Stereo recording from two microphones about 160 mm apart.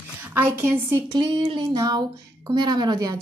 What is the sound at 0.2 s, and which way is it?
Speech, 15° right (ahead or behind).